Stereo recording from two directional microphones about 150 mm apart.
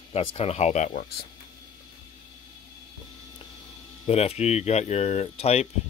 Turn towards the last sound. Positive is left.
turn(degrees=45)  # may be behind; listen again after turning